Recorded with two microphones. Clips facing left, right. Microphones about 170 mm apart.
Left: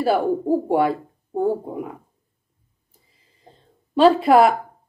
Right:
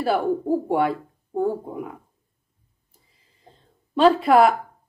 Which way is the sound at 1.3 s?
30° left (ahead or behind).